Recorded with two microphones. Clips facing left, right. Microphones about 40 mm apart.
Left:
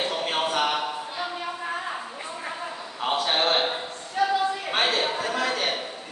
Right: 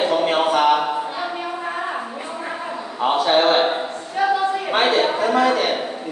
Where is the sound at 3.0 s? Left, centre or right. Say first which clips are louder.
Right 8 dB; centre.